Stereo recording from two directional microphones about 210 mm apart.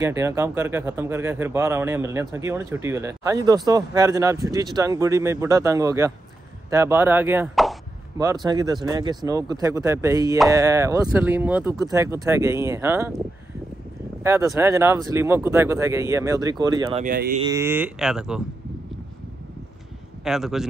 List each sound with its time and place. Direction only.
0.0 s speech: 15° right (ahead or behind)
8.2 s speech: 15° right (ahead or behind)
14.2 s speech: 15° right (ahead or behind)
16.9 s speech: 40° right (ahead or behind)
17.4 s speech: 15° right (ahead or behind)
20.2 s a man's voice: centre (ahead or behind)